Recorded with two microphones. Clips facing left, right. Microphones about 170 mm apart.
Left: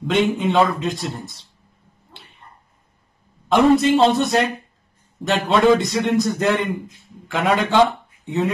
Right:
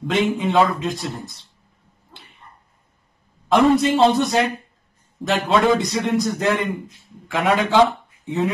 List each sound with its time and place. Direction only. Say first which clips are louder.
0.0 s a man's voice: left 1 dB; centre (ahead or behind)
3.4 s a man's voice: left 1 dB; centre (ahead or behind)